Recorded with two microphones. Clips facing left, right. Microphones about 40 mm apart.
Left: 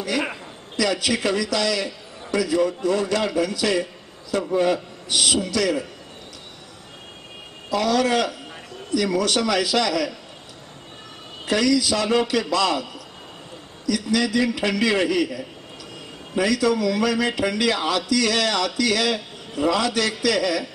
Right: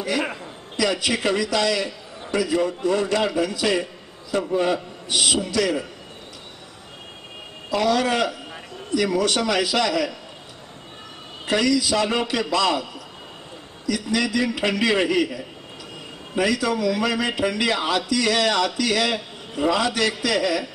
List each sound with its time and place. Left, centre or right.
0.7 s a man's voice: right
7.7 s a man's voice: centre
11.4 s a man's voice: centre
13.8 s a man's voice: right
16.3 s a man's voice: centre